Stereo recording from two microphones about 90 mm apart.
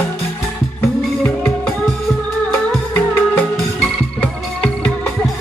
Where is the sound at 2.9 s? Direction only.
20° left (ahead or behind).